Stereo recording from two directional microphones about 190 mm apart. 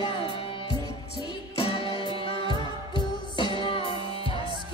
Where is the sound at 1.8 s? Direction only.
25° right (ahead or behind).